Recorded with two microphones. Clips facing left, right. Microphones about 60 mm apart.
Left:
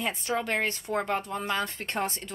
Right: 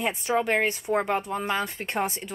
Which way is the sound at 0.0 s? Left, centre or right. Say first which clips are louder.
Right 4 dB; centre.